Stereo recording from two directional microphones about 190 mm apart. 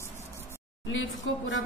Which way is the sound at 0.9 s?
80° left.